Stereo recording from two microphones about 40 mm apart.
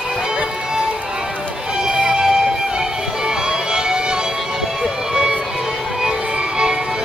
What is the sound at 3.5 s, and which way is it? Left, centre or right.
Music, centre.